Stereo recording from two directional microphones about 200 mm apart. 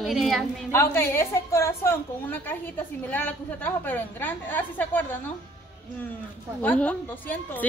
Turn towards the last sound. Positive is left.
turn(degrees=10)  # may be behind; listen again after turning